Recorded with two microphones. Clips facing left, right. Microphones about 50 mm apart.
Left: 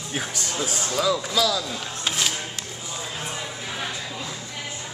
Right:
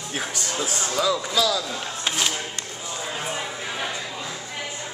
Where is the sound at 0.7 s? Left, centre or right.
Centre.